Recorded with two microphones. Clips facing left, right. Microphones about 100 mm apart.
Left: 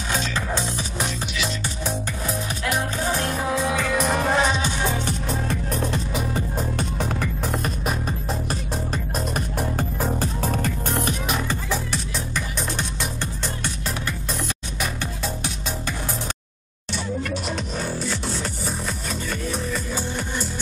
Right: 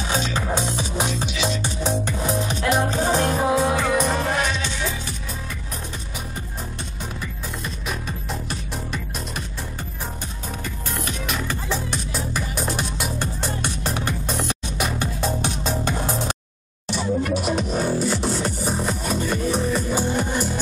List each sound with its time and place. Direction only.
0.1 s music: 20° right (ahead or behind)
4.0 s music: 5° left (ahead or behind)
4.3 s music: 25° left (ahead or behind)
12.4 s music: 10° right (ahead or behind)
13.8 s music: 25° right (ahead or behind)
17.2 s music: 10° right (ahead or behind)